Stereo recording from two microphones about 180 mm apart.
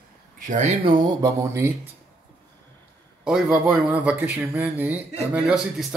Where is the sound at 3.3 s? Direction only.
5° right (ahead or behind).